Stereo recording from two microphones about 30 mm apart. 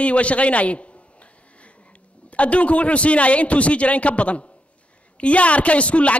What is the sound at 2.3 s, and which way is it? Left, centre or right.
A man's voice, left.